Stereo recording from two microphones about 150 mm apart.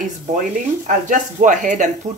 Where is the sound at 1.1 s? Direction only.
55° right (ahead or behind).